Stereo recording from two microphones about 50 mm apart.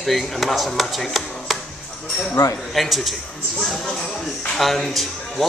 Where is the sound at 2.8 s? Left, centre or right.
Centre.